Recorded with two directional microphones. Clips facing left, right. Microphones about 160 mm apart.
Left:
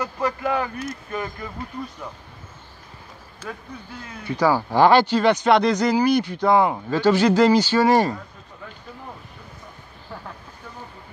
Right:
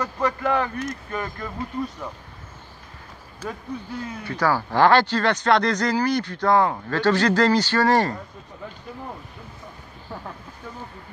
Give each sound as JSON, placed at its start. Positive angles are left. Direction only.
{"t": 0.0, "sound": "speech", "side_deg": 10}
{"t": 4.3, "sound": "speech", "side_deg": 15}